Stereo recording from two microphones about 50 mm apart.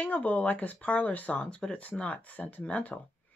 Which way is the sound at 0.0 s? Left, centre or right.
Left.